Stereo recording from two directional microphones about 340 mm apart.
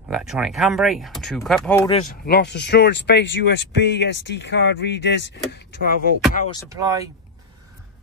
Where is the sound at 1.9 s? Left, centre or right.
Left.